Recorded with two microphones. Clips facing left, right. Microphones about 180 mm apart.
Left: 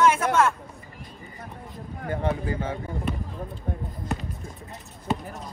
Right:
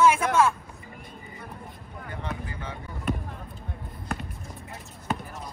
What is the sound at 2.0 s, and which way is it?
Speech, 40° left (ahead or behind).